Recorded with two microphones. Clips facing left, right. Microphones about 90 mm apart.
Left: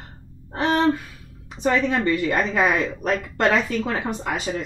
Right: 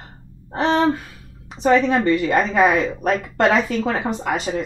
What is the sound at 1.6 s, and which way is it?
Speech, 20° right (ahead or behind).